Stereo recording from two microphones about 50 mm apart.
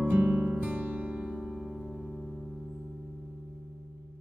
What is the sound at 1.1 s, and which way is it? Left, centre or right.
Music, centre.